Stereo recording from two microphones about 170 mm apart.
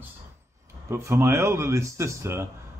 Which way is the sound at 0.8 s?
15° right (ahead or behind).